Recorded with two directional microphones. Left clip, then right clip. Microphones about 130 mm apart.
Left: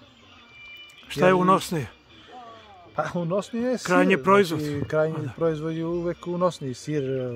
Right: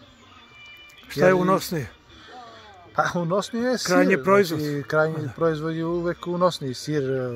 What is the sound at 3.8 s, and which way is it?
Speech, 25° left (ahead or behind).